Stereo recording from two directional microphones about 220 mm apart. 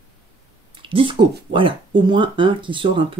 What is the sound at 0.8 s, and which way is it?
Speech, 25° right (ahead or behind).